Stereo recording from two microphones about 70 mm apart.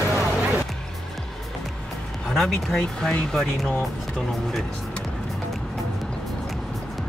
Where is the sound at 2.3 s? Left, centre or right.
Centre.